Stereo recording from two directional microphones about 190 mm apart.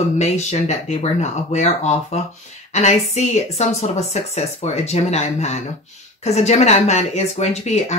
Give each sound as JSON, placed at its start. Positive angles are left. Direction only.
{"t": 0.2, "sound": "speech", "side_deg": 35}